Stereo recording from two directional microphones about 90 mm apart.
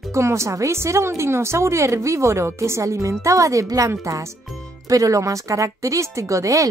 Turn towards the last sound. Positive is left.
turn(degrees=-35)  # may be behind; listen again after turning